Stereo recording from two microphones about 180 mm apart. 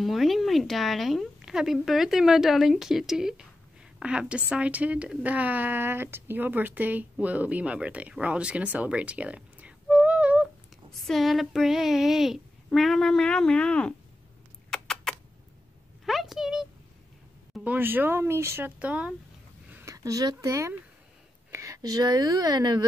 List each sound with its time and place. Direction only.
0.0 s a woman's voice: centre (ahead or behind)
14.7 s rodents: centre (ahead or behind)
16.1 s speech: centre (ahead or behind)
17.6 s speech: 10° right (ahead or behind)